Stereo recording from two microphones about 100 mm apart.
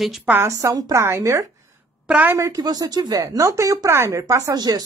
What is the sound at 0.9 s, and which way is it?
Speech, 25° right (ahead or behind).